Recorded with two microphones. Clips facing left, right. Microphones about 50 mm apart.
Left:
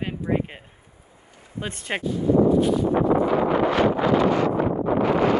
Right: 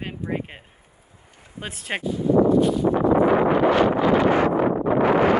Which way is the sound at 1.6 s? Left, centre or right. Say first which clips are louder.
Left 1 dB; centre.